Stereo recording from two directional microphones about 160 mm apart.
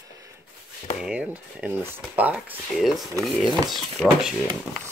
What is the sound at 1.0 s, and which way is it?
Speech, 5° right (ahead or behind).